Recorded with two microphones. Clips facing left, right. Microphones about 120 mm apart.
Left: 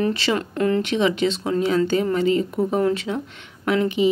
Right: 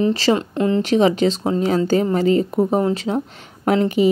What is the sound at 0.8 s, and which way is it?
Speech, 35° right (ahead or behind).